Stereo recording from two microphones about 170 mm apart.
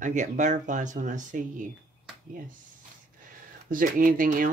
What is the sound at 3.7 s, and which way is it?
Speech, 55° right (ahead or behind).